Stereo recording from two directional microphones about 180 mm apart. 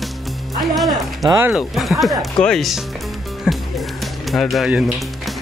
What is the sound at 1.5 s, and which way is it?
Speech, centre (ahead or behind).